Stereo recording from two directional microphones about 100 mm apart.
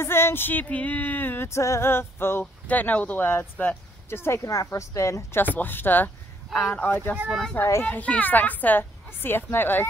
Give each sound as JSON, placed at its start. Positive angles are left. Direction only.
{"t": 0.0, "sound": "speech", "side_deg": 25}